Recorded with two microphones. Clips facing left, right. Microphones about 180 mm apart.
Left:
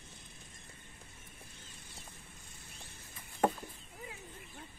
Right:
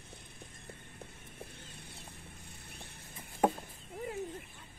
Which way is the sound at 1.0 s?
60° right (ahead or behind).